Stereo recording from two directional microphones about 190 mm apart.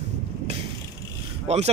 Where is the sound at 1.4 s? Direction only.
35° right (ahead or behind).